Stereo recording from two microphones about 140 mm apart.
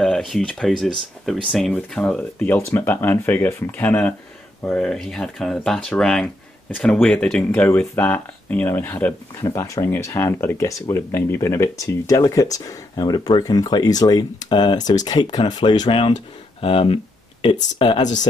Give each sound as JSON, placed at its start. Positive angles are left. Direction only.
{"t": 0.0, "sound": "speech", "side_deg": 0}